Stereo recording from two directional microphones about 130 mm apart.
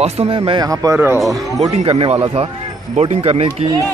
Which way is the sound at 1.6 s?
45° right (ahead or behind).